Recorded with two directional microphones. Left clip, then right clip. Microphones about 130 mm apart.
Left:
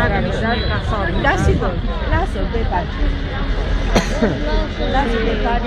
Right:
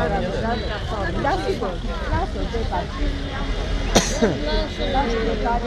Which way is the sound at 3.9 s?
50° right (ahead or behind).